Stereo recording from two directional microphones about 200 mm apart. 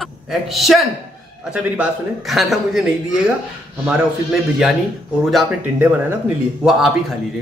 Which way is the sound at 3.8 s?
5° right (ahead or behind).